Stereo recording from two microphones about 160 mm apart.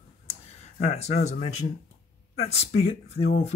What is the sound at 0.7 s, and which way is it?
Speech, 45° left (ahead or behind).